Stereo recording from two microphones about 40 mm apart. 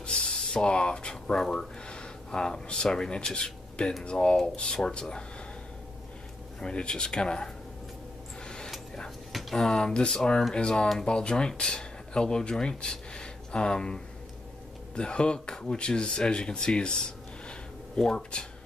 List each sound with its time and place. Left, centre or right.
0.0 s speech: centre
1.9 s a sound: left
2.4 s speech: centre
4.7 s speech: centre
6.6 s speech: left
8.5 s a sound: centre
9.3 s speech: centre